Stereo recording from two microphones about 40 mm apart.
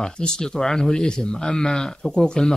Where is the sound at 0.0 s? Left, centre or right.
Centre.